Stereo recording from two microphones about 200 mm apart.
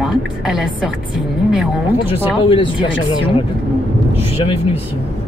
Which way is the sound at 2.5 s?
25° left (ahead or behind).